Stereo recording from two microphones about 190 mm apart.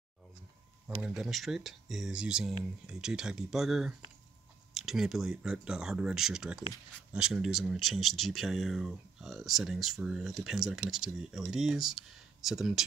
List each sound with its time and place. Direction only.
1.0 s speech: centre (ahead or behind)